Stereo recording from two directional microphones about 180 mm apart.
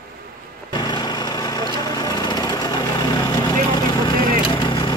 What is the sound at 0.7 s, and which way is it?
Lawn mower, 25° left (ahead or behind).